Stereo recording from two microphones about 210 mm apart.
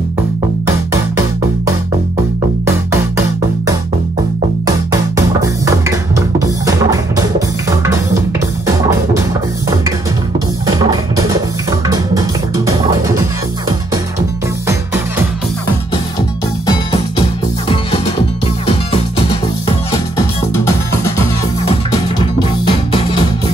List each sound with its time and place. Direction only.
2.6 s music: 15° right (ahead or behind)
4.6 s music: 15° right (ahead or behind)
10.7 s music: 20° right (ahead or behind)
22.7 s music: 25° left (ahead or behind)